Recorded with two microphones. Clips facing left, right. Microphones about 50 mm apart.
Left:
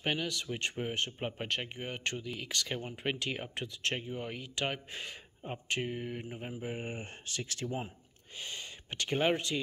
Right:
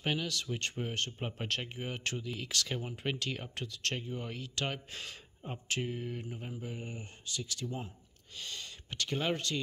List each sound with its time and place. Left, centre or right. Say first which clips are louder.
0.0 s speech: left 1 dB; centre
3.0 s speech: left 1 dB; centre
6.6 s speech: left 4 dB; left
8.4 s speech: left 1 dB; left